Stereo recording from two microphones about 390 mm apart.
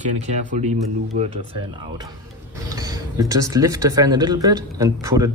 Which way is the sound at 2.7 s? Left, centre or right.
Centre.